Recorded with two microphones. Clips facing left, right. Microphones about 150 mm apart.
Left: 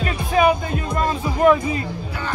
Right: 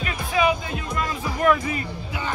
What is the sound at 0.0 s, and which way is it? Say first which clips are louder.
Music: left 5 dB; 45° left (ahead or behind).